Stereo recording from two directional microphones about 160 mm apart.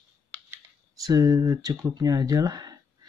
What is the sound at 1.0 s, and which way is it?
Speech, 20° right (ahead or behind).